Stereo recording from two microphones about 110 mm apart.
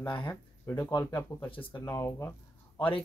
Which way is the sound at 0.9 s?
35° left (ahead or behind).